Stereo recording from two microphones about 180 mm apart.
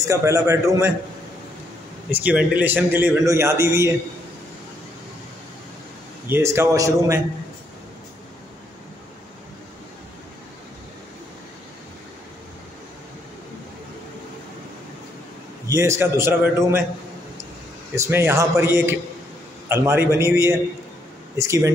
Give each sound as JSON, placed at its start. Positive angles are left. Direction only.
{"t": 0.0, "sound": "a man's voice", "side_deg": -20}
{"t": 2.0, "sound": "a man's voice", "side_deg": -10}
{"t": 6.2, "sound": "a man's voice", "side_deg": -15}
{"t": 15.6, "sound": "a man's voice", "side_deg": -15}
{"t": 17.9, "sound": "a man's voice", "side_deg": -15}